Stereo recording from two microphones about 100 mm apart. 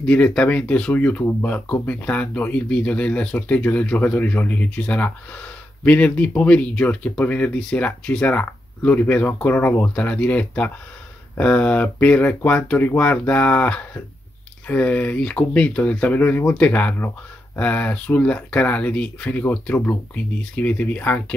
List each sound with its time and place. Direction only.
0.0 s speech: 10° left (ahead or behind)